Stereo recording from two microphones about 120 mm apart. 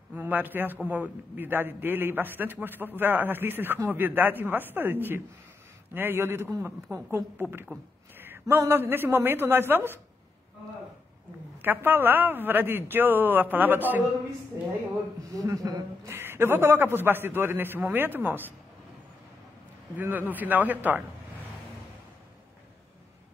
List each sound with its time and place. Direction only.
0.1 s a man's voice: 15° right (ahead or behind)
11.6 s a man's voice: 15° right (ahead or behind)
15.3 s a woman's voice: 30° right (ahead or behind)
16.2 s a man's voice: 20° right (ahead or behind)
20.0 s a man's voice: 15° right (ahead or behind)